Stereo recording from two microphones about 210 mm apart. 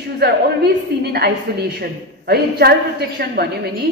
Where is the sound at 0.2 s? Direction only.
50° right (ahead or behind).